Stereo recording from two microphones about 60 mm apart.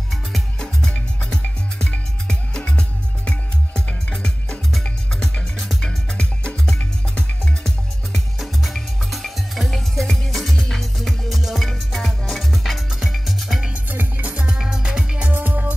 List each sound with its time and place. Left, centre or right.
0.1 s music: centre
13.8 s music: right
15.3 s music: right